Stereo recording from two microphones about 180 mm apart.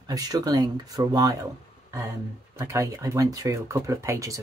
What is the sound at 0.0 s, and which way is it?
Speech, 20° right (ahead or behind).